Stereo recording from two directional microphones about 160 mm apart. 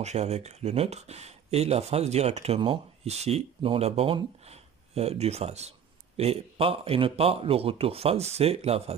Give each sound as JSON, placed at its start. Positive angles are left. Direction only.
{"t": 0.0, "sound": "speech", "side_deg": -45}